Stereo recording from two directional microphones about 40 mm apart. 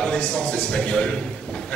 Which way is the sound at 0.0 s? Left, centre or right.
Left.